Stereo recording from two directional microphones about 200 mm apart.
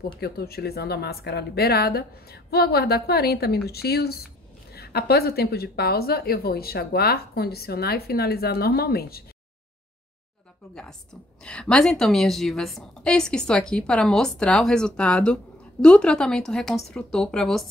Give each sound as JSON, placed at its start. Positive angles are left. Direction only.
{"t": 0.2, "sound": "a woman's voice", "side_deg": 50}
{"t": 10.7, "sound": "a woman's voice", "side_deg": 5}